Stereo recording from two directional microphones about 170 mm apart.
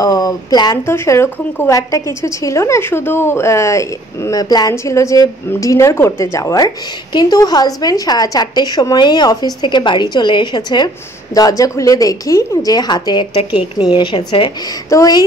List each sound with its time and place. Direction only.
0.0 s speech: 20° left (ahead or behind)